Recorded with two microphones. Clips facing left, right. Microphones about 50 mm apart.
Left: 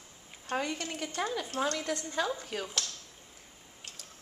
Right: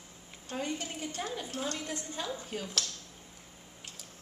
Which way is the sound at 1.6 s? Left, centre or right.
Left.